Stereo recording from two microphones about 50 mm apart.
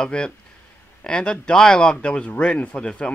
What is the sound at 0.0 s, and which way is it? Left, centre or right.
Speech, centre.